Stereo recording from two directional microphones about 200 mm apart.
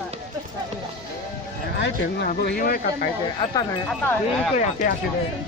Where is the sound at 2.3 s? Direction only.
45° left (ahead or behind).